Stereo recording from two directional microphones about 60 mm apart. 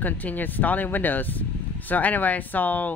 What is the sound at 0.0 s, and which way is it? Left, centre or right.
Speech, left.